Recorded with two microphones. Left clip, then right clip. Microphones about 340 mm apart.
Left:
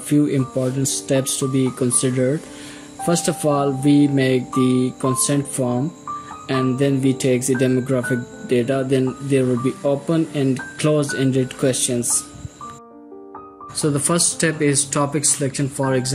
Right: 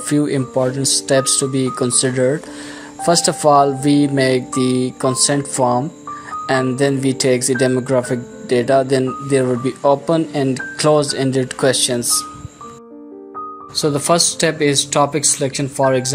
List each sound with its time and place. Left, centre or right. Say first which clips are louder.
0.1 s speech: right 2 dB; centre
6.8 s speech: right 3 dB; centre
13.7 s speech: right 5 dB; centre